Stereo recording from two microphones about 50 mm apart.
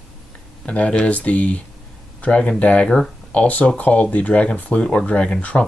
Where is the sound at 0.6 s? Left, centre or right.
Left.